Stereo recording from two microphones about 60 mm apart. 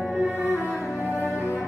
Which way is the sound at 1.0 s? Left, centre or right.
Right.